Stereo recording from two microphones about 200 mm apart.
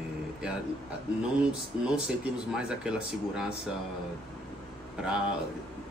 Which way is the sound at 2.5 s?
5° right (ahead or behind).